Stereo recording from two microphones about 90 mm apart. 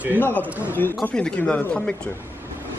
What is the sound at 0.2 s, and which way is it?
A man's voice, 20° left (ahead or behind).